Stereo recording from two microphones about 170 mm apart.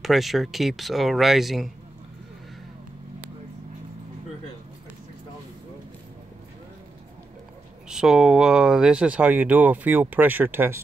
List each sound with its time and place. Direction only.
0.0 s speech: centre (ahead or behind)
7.9 s speech: 5° right (ahead or behind)